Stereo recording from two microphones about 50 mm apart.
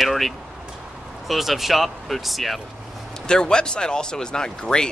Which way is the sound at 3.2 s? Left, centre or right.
Centre.